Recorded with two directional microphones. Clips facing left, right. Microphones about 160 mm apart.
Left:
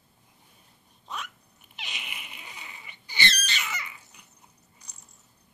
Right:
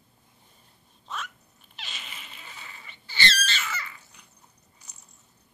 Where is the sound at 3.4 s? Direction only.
15° left (ahead or behind).